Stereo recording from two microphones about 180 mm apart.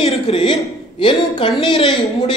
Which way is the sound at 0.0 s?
30° left (ahead or behind).